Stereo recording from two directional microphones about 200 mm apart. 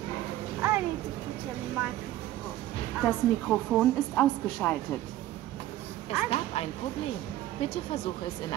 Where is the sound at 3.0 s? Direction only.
Centre (ahead or behind).